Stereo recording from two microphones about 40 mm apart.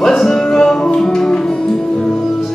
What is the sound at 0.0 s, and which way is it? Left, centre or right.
Music, centre.